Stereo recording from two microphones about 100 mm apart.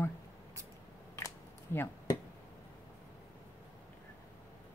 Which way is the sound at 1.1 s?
25° left (ahead or behind).